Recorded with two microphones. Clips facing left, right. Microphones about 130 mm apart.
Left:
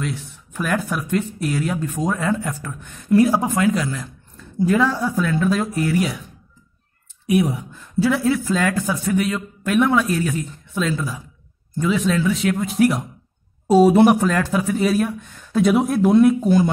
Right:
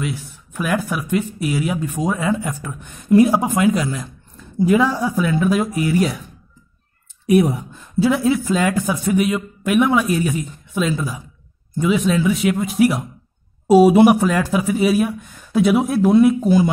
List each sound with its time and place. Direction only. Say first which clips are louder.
0.5 s speech: right 1 dB; 5° right (ahead or behind)
7.2 s speech: right 4 dB; 45° right (ahead or behind)
7.7 s speech: right 1 dB; 20° right (ahead or behind)